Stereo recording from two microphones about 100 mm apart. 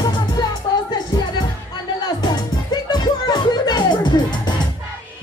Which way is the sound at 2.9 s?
45° left (ahead or behind).